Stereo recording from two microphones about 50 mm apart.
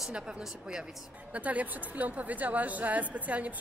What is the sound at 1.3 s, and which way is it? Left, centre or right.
A woman's voice, right.